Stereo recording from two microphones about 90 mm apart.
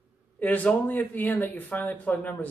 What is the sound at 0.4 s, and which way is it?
Speech, 15° left (ahead or behind).